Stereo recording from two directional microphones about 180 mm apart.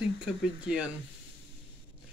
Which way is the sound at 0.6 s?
5° right (ahead or behind).